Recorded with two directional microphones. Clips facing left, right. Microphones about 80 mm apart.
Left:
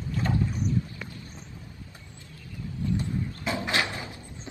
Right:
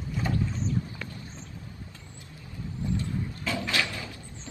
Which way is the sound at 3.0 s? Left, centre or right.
Left.